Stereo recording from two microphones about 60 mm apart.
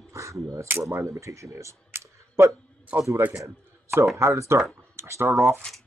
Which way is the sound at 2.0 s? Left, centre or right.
Right.